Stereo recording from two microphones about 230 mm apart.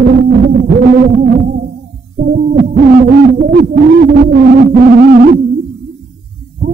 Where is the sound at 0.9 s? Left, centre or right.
Right.